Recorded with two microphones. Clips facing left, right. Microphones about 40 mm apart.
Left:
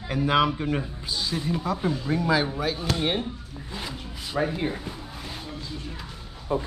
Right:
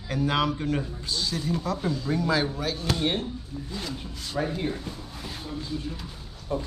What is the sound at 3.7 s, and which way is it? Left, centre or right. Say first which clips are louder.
Zipper: left 1 dB; centre.